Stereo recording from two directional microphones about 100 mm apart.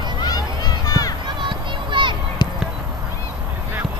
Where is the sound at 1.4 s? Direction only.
50° right (ahead or behind).